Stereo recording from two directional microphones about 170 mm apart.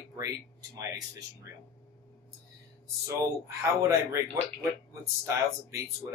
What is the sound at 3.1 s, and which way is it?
Speech, 15° right (ahead or behind).